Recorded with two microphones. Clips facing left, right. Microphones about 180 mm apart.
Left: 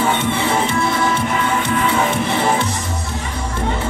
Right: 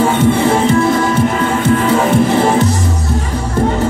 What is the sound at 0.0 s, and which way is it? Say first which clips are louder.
Music: right 7 dB; 40° right (ahead or behind).